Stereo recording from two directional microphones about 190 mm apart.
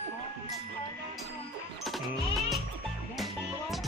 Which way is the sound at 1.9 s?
Centre (ahead or behind).